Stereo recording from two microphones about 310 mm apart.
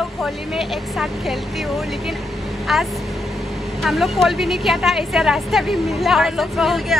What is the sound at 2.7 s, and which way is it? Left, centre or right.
Speech, centre.